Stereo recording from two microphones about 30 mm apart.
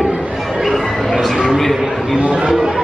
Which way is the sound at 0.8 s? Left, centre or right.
Centre.